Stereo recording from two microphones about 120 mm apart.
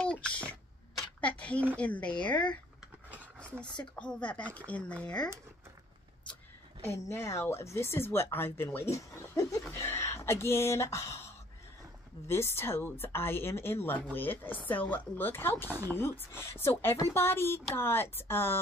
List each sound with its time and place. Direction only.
0.0 s speech: 10° left (ahead or behind)
4.0 s speech: 10° left (ahead or behind)
6.9 s speech: 25° left (ahead or behind)